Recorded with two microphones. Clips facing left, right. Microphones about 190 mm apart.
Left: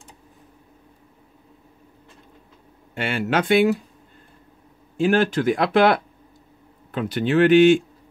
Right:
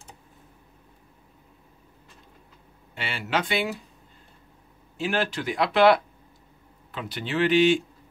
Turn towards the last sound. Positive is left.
turn(degrees=50)  # may be behind; listen again after turning